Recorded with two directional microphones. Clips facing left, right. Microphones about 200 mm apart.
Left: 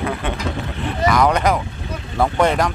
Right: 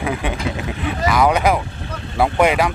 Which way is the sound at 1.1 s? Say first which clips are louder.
Right 1 dB; 5° right (ahead or behind).